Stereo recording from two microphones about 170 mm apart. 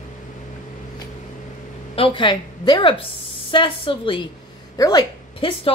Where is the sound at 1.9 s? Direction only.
30° left (ahead or behind).